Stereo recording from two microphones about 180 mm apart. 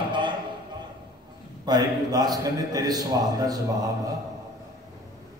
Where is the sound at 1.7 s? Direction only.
20° right (ahead or behind).